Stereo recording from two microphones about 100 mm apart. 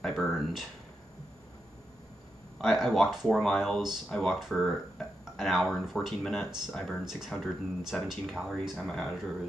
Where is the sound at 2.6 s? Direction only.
Centre (ahead or behind).